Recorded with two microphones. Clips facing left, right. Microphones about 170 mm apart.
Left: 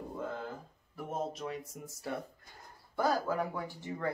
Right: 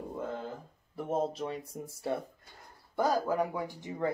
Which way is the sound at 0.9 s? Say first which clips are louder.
Right 6 dB; 30° right (ahead or behind).